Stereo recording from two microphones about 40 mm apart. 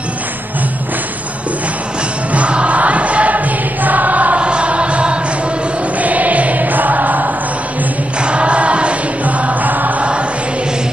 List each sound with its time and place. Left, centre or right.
2.3 s choir: right
4.4 s music: right
5.9 s choir: right
8.2 s music: right
9.2 s music: right